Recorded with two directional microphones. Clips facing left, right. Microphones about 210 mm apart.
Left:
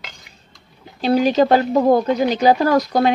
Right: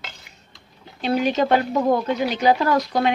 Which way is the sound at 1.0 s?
35° left (ahead or behind).